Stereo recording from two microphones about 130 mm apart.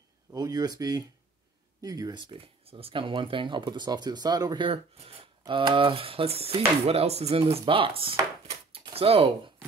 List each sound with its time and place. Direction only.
0.3 s speech: 30° right (ahead or behind); by 9.3 s 45° right (ahead or behind)